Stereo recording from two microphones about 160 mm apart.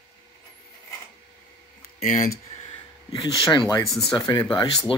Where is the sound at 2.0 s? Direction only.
60° left (ahead or behind).